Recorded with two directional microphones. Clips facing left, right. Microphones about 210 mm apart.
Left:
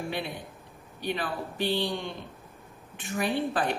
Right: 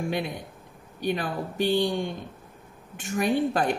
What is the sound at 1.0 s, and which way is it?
A woman's voice, 45° right (ahead or behind).